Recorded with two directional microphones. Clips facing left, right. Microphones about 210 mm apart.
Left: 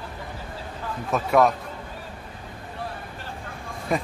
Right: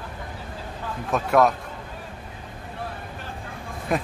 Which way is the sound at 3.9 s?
Centre (ahead or behind).